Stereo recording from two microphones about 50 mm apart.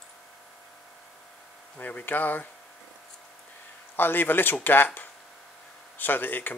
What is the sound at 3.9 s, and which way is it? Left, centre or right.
Speech, left.